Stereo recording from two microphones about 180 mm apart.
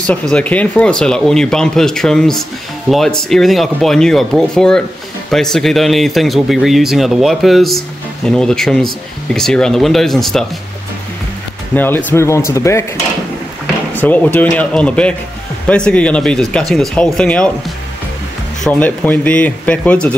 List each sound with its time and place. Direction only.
0.0 s speech: 5° left (ahead or behind)
11.7 s speech: 10° left (ahead or behind)
13.9 s speech: 10° left (ahead or behind)